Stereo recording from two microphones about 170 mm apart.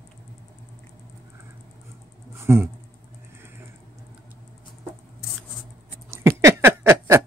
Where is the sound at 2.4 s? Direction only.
15° right (ahead or behind).